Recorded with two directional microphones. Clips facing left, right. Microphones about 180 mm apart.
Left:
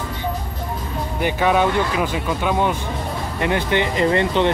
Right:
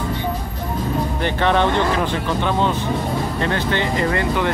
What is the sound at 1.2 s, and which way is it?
Speech, 10° left (ahead or behind).